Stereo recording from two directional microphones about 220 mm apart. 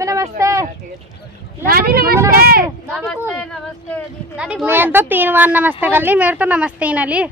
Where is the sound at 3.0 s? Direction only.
5° left (ahead or behind).